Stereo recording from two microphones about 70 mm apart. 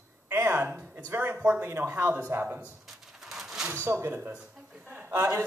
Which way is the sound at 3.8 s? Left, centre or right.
Right.